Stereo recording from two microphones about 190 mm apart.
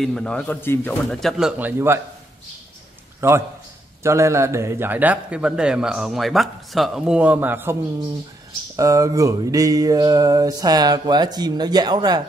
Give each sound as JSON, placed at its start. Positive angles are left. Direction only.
{"t": 0.0, "sound": "speech", "side_deg": 5}
{"t": 1.4, "sound": "a man's voice", "side_deg": -10}
{"t": 3.2, "sound": "a man's voice", "side_deg": -15}
{"t": 8.7, "sound": "a sound", "side_deg": -15}